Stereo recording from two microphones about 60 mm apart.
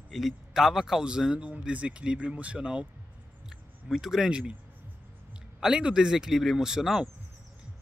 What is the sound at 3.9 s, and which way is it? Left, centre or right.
Speech, centre.